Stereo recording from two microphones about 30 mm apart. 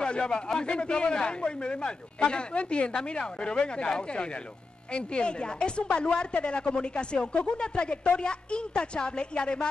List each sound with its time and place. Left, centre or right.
0.0 s a man's voice: left